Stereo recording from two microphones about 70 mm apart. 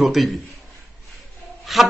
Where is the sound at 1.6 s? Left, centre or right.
Centre.